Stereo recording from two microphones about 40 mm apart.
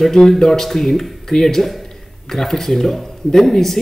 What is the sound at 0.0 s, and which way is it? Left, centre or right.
Speech, centre.